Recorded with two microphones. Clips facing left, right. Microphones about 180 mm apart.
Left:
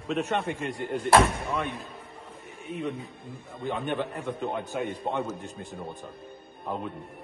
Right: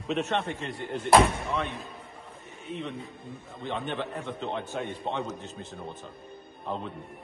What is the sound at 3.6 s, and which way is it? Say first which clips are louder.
A man's voice: left 3 dB; 10° left (ahead or behind).